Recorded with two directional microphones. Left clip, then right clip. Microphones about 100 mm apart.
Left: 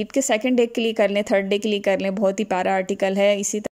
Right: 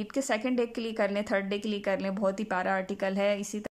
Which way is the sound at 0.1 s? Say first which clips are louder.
Left 9 dB; 30° left (ahead or behind).